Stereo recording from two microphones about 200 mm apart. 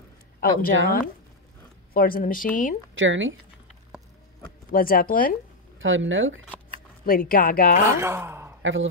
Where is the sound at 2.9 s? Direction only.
70° right (ahead or behind).